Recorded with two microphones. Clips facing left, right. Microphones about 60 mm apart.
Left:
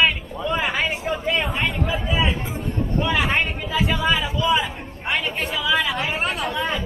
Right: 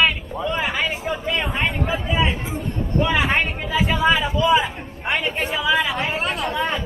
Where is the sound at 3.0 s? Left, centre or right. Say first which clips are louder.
Right 2 dB; centre.